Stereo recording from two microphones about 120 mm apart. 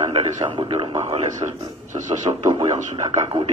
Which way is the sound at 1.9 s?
45° right (ahead or behind).